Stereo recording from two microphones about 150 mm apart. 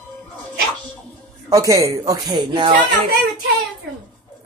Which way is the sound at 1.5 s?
20° right (ahead or behind).